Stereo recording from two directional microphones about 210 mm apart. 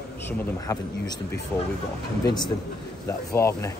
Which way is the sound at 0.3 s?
15° left (ahead or behind).